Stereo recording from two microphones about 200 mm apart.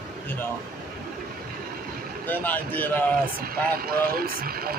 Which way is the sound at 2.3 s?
10° left (ahead or behind).